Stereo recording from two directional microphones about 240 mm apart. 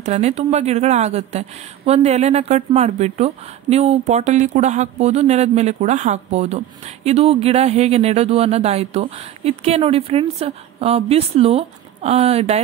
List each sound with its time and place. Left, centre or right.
0.0 s speech: right